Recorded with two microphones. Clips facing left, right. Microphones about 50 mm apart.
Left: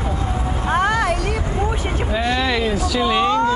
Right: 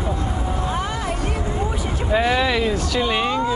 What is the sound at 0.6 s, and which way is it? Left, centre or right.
Music, left.